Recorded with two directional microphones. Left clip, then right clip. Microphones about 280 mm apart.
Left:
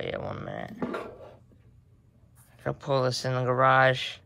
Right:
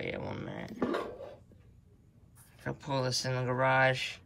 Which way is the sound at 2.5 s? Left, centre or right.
Centre.